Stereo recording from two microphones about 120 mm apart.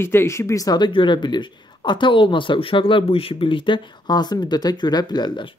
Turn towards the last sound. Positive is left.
turn(degrees=40)  # may be behind; listen again after turning